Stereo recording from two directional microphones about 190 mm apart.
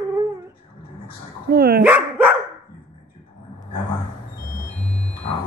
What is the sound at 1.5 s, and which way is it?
Dog, 55° right (ahead or behind).